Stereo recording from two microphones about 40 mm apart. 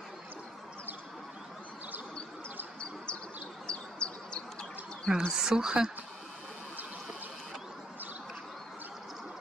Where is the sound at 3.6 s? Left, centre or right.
Left.